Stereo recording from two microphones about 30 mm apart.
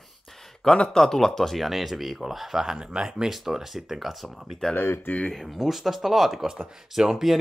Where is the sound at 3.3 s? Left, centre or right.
Centre.